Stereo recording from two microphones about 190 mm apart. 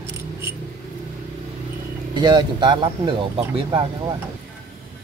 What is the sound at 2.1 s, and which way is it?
Speech, 25° right (ahead or behind).